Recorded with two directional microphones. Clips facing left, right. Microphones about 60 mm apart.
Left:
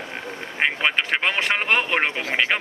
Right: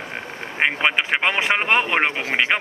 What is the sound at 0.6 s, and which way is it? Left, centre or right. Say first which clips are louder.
Speech: right 2 dB; centre.